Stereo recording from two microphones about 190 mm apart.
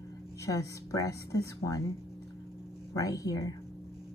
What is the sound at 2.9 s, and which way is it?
Speech, 15° left (ahead or behind).